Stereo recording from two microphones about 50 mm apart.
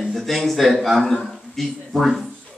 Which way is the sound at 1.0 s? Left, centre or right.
Centre.